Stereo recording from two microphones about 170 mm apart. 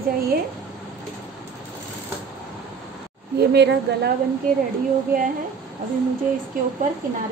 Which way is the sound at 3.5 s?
80° right.